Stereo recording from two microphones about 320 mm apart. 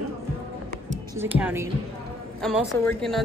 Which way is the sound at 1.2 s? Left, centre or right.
Centre.